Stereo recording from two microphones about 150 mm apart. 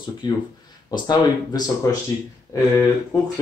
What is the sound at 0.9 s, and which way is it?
Speech, 25° left (ahead or behind).